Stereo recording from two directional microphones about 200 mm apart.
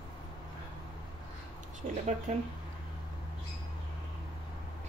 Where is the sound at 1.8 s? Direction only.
40° right (ahead or behind).